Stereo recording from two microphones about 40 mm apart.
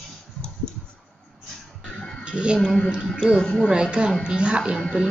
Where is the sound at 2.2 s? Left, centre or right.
Right.